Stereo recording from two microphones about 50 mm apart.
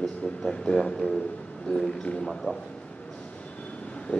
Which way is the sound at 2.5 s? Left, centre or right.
Left.